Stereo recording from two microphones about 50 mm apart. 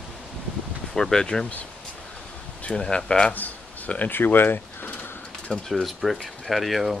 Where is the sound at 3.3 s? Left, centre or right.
Left.